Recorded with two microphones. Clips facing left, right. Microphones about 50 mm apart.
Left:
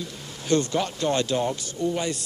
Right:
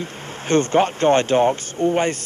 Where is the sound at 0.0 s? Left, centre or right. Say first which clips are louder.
Right 6 dB; right.